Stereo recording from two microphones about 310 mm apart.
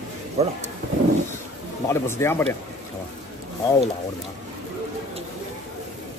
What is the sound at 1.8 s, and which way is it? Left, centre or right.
Speech, centre.